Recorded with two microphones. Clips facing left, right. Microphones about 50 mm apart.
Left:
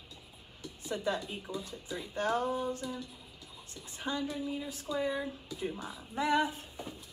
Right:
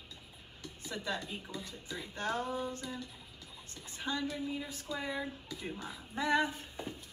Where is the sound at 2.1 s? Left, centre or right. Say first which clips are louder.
Left 5 dB; left.